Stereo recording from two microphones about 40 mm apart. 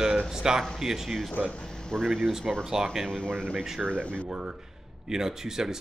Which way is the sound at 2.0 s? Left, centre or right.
Centre.